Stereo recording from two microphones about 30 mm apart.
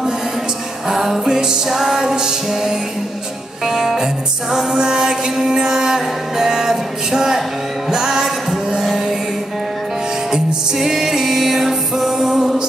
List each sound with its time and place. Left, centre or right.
0.9 s music: centre
1.3 s music: right
1.7 s music: centre
10.3 s music: centre